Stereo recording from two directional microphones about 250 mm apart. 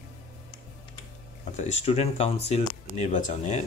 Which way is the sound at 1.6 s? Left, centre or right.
Left.